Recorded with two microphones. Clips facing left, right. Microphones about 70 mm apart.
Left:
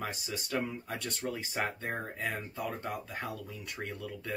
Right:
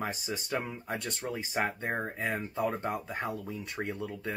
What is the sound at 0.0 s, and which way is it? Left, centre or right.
Speech, right.